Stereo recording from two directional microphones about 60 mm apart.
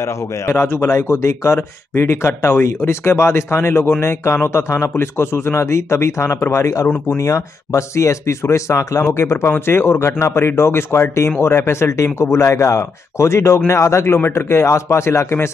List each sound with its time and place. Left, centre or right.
0.0 s speech: left
9.1 s speech: left